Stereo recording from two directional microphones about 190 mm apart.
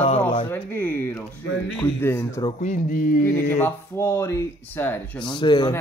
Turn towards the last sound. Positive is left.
turn(degrees=25)  # may be behind; listen again after turning